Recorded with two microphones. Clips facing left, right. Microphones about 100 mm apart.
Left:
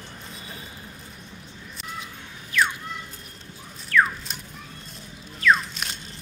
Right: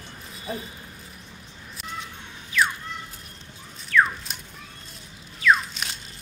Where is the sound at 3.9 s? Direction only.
Centre (ahead or behind).